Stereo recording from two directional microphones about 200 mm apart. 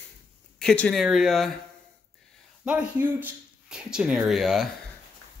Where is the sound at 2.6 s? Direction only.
10° right (ahead or behind).